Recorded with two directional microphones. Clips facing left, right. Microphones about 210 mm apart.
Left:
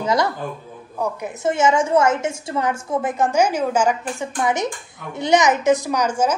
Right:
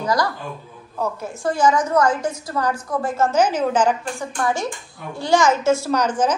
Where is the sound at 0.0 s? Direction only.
25° left (ahead or behind).